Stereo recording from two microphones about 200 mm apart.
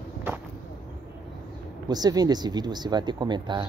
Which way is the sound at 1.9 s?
20° right (ahead or behind).